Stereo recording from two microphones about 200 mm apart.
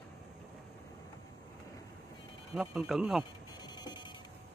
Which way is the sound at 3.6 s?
20° left (ahead or behind).